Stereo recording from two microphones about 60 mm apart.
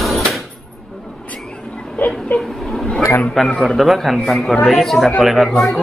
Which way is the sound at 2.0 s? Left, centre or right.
Left.